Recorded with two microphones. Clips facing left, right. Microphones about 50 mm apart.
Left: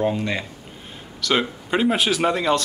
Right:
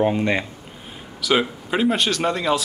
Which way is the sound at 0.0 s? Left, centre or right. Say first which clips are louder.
Right 3 dB; right.